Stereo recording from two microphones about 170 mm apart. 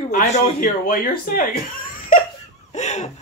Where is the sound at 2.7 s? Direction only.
40° left (ahead or behind).